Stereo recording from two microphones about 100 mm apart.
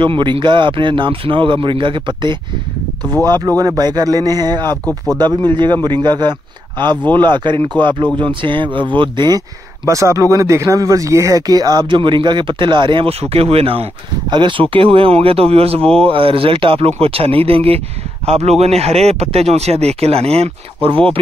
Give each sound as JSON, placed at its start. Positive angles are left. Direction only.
{"t": 0.0, "sound": "speech", "side_deg": -55}
{"t": 3.3, "sound": "speech", "side_deg": -40}
{"t": 9.8, "sound": "speech", "side_deg": -30}
{"t": 13.2, "sound": "speech", "side_deg": -80}
{"t": 14.3, "sound": "speech", "side_deg": -55}